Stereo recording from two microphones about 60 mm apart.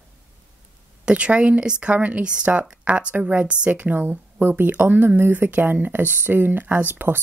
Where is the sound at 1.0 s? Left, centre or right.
Centre.